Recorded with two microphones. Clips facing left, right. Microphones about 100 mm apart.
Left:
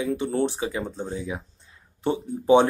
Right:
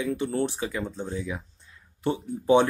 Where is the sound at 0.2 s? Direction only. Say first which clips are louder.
Left 2 dB; 25° left (ahead or behind).